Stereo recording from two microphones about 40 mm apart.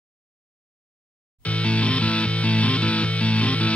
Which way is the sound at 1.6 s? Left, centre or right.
Left.